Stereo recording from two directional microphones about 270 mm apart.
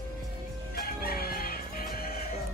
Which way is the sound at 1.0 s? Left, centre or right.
Left.